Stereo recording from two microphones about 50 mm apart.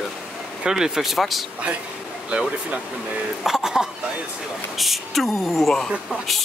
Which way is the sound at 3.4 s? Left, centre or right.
Centre.